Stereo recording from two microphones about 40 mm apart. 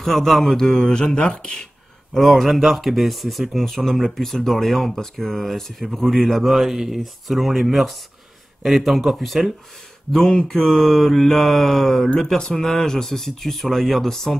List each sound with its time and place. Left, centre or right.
0.0 s speech: centre
0.8 s speech: left
2.1 s speech: centre
10.1 s speech: centre
12.4 s speech: centre